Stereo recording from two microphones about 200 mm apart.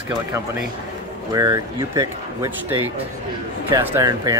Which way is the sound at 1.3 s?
15° right (ahead or behind).